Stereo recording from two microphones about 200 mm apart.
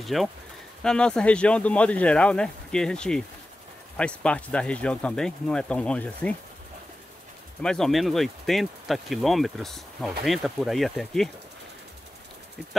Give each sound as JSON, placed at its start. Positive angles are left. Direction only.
{"t": 0.0, "sound": "speech", "side_deg": 0}
{"t": 7.6, "sound": "speech", "side_deg": 0}